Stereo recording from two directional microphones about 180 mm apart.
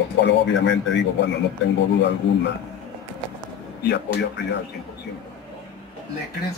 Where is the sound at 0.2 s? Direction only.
80° left.